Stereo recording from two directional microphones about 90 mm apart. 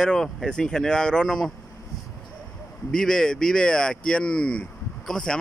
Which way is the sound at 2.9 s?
5° left (ahead or behind).